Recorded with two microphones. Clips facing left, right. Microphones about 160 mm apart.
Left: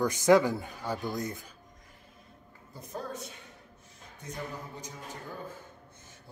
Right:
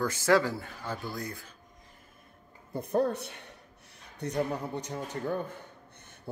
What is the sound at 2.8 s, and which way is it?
Speech, 60° right (ahead or behind).